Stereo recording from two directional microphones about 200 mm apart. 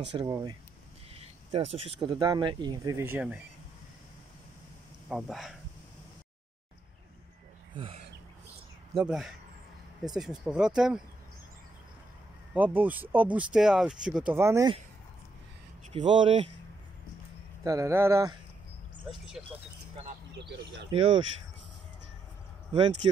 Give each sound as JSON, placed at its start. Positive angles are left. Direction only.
{"t": 0.1, "sound": "speech", "side_deg": -20}
{"t": 1.5, "sound": "speech", "side_deg": -30}
{"t": 2.0, "sound": "speech", "side_deg": -20}
{"t": 5.1, "sound": "speech", "side_deg": 0}
{"t": 7.7, "sound": "speech", "side_deg": -25}
{"t": 8.9, "sound": "speech", "side_deg": 0}
{"t": 12.5, "sound": "speech", "side_deg": -10}
{"t": 15.9, "sound": "speech", "side_deg": -25}
{"t": 17.6, "sound": "speech", "side_deg": -15}
{"t": 19.0, "sound": "speech", "side_deg": 0}
{"t": 20.9, "sound": "speech", "side_deg": -25}